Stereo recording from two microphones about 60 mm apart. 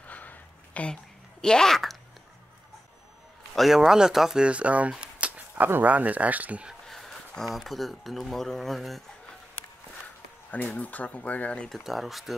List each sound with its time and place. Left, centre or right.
0.0 s a sound: left
1.4 s speech: centre
3.5 s speech: centre; by 6.7 s right
6.9 s speech: centre
10.8 s speech: left
11.7 s speech: centre